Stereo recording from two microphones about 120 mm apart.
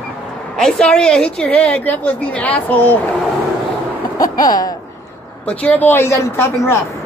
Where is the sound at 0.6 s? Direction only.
5° left (ahead or behind).